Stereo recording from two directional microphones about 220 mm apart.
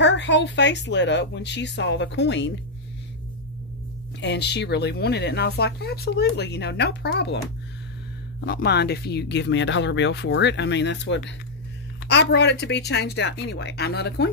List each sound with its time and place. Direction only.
0.0 s speech: 55° left (ahead or behind)
4.2 s speech: 50° left (ahead or behind)
8.4 s speech: 45° left (ahead or behind)